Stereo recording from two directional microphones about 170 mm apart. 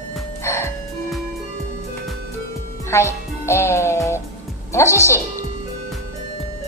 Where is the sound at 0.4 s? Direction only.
15° left (ahead or behind).